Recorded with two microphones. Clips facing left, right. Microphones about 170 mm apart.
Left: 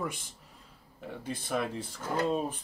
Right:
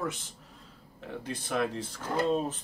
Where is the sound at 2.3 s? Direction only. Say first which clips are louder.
Right 2 dB; 10° left (ahead or behind).